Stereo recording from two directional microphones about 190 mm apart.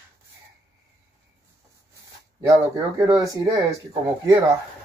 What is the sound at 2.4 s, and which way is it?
Speech, 15° right (ahead or behind).